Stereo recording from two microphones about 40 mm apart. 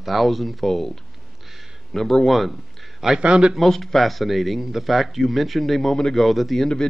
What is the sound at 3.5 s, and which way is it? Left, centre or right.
Speech, centre.